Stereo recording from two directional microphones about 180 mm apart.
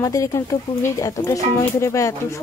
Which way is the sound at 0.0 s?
15° left (ahead or behind).